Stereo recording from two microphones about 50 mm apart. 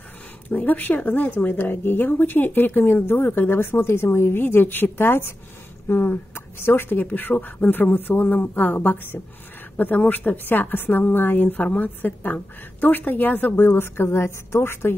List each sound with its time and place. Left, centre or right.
0.5 s a woman's voice: left
1.4 s speech: left
7.0 s a woman's voice: left
13.6 s speech: left